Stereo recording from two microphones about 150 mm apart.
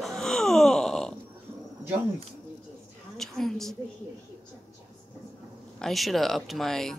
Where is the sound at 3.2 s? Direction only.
Centre (ahead or behind).